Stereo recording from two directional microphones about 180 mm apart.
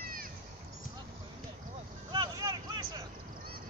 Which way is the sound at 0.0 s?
55° right (ahead or behind).